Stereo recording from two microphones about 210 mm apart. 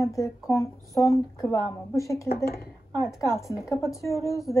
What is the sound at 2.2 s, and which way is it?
Speech, 45° left (ahead or behind).